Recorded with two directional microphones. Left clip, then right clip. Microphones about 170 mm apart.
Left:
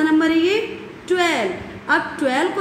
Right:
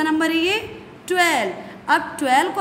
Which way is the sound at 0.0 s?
90° right.